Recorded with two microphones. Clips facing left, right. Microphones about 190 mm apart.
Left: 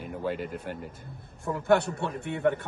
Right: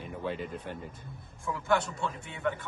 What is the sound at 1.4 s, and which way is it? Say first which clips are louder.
A man's voice: left 5 dB; 60° left (ahead or behind).